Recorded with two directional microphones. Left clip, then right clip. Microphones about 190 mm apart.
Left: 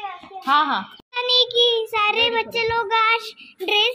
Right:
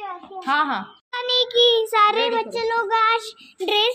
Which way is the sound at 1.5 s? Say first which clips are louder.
Right 2 dB; 15° right (ahead or behind).